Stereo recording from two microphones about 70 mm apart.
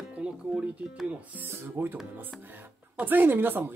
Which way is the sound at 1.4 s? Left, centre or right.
Right.